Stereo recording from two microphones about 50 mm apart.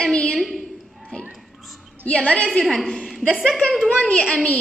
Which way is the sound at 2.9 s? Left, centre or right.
Centre.